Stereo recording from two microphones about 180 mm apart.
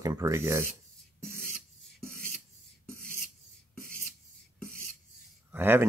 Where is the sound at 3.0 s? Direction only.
5° left (ahead or behind).